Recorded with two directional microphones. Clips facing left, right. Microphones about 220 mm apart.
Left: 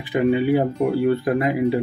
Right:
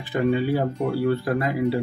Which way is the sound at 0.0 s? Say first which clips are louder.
Left 3 dB; 15° left (ahead or behind).